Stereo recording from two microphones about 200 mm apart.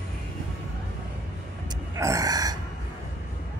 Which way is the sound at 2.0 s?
15° right (ahead or behind).